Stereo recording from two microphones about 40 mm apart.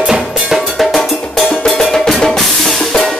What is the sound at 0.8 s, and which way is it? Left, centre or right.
Cowbell, centre.